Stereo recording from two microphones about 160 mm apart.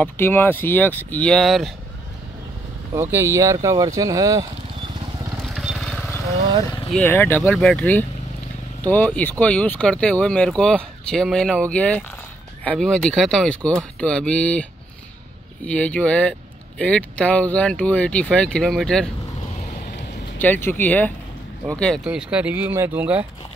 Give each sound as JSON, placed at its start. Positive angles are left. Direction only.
{"t": 0.0, "sound": "speech", "side_deg": 10}
{"t": 2.9, "sound": "speech", "side_deg": -15}
{"t": 5.5, "sound": "vehicle", "side_deg": 0}
{"t": 7.0, "sound": "speech", "side_deg": 15}
{"t": 20.3, "sound": "speech", "side_deg": 10}
{"t": 22.0, "sound": "speech", "side_deg": -5}